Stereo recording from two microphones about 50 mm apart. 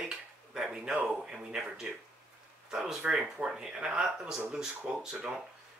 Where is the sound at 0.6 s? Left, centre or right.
Centre.